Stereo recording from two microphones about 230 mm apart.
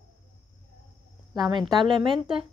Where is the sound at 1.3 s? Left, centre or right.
Centre.